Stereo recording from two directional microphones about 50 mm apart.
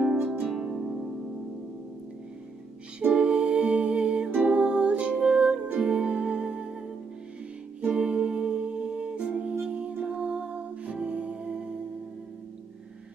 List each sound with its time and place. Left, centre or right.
0.1 s music: centre
3.0 s music: right
7.9 s music: right